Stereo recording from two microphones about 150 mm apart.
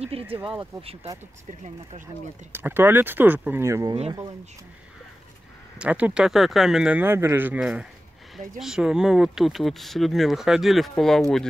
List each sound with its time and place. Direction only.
0.0 s speech: 40° right (ahead or behind)
2.5 s speech: 15° right (ahead or behind)
5.8 s speech: 10° right (ahead or behind)